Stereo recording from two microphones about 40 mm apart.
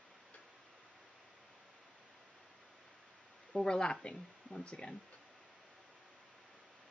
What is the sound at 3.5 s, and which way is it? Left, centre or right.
Speech, centre.